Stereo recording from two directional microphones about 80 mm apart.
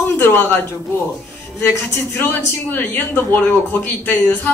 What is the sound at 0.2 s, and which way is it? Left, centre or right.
Speech, left.